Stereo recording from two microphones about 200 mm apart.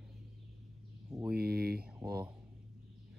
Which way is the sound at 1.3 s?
50° right (ahead or behind).